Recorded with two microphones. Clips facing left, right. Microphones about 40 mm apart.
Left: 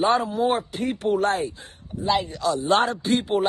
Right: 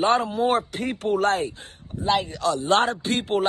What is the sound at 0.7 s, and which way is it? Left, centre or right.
Speech, right.